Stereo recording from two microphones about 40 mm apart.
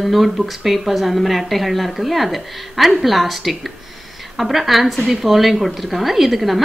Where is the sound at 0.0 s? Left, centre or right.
Centre.